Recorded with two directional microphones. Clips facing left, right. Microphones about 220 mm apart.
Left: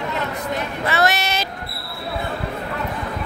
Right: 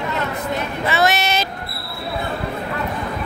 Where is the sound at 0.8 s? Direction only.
25° right (ahead or behind).